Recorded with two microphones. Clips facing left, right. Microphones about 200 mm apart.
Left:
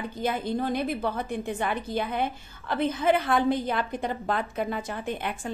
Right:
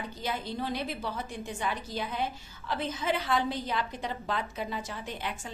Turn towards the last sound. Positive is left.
turn(degrees=55)  # may be behind; listen again after turning